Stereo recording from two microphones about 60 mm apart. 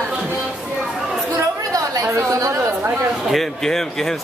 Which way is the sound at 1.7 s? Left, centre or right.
Right.